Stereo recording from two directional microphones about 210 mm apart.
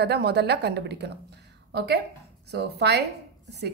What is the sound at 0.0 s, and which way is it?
A woman's voice, 50° right (ahead or behind).